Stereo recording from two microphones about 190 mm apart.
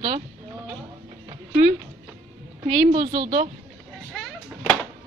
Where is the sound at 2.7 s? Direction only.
35° right (ahead or behind).